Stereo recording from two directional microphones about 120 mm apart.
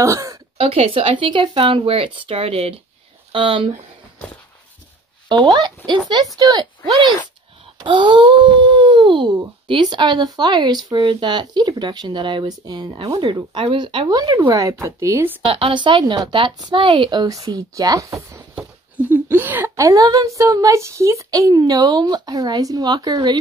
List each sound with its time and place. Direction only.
0.0 s speech: 25° right (ahead or behind)
0.6 s speech: 50° right (ahead or behind)
5.3 s a woman's voice: 40° right (ahead or behind)
7.8 s a woman's voice: 40° right (ahead or behind)
13.2 s a woman's voice: 45° right (ahead or behind); by 15.3 s 25° right (ahead or behind)
15.4 s a woman's voice: 50° right (ahead or behind); by 18.4 s 25° right (ahead or behind)
18.5 s a woman's voice: 10° right (ahead or behind); by 23.3 s 35° right (ahead or behind)